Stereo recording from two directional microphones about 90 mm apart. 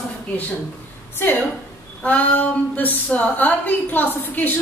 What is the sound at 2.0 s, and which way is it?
Speech, 20° left (ahead or behind).